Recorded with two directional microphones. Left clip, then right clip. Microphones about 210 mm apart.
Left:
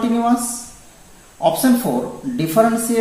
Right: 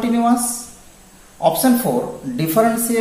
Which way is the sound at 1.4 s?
25° right (ahead or behind).